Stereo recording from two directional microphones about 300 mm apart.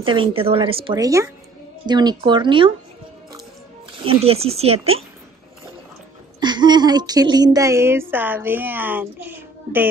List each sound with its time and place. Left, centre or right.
0.0 s speech: centre
4.0 s speech: centre
6.4 s speech: centre